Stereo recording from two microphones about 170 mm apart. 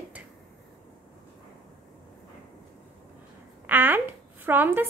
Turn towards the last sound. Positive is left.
turn(degrees=-10)  # may be behind; listen again after turning